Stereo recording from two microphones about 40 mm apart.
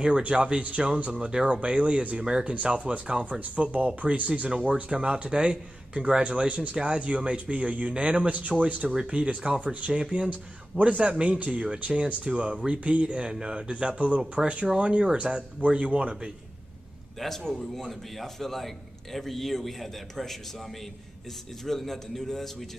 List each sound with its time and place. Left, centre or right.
0.2 s a man's voice: right
0.6 s a man's voice: right
8.9 s a man's voice: right
9.9 s a man's voice: right
10.3 s a man's voice: right
17.2 s a man's voice: centre